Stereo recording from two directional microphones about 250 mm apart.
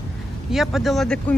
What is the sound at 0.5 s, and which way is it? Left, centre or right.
Speech, centre.